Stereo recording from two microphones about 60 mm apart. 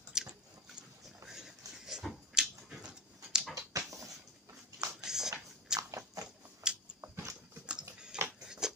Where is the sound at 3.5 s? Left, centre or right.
Right.